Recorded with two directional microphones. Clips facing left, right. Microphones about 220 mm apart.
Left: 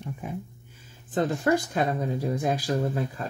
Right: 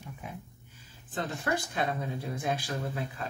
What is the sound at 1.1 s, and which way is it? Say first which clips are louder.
Speech: left 9 dB; 40° left (ahead or behind).